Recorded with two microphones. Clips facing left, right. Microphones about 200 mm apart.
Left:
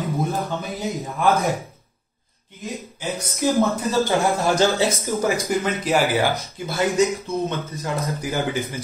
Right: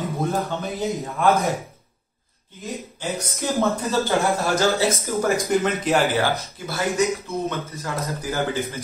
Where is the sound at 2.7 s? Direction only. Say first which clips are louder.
Even; centre (ahead or behind).